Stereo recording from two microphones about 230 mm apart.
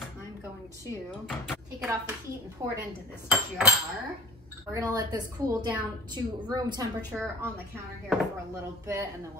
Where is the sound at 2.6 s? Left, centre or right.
Centre.